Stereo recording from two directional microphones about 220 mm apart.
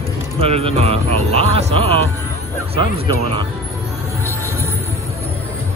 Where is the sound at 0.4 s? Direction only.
25° right (ahead or behind).